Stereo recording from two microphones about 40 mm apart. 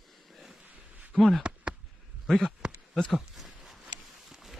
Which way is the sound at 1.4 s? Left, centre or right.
Right.